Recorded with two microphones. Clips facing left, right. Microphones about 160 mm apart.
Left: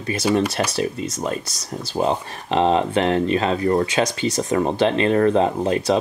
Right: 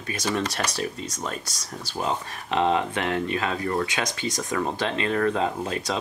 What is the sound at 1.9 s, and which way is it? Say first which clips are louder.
Speech: left 7 dB; 25° left (ahead or behind).